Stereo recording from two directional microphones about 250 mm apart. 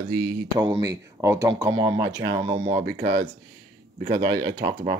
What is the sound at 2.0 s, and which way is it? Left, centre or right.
Speech, right.